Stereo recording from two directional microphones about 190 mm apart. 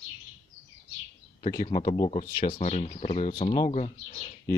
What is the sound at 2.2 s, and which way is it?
Speech, 50° left (ahead or behind).